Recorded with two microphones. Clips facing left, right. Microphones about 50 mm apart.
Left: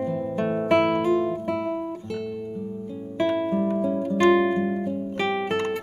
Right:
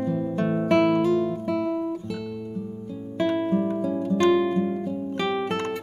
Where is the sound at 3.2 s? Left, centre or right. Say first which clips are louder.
Even; centre.